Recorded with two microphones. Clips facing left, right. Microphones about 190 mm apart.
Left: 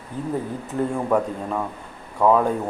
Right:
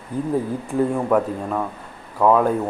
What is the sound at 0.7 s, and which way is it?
Speech, 5° right (ahead or behind).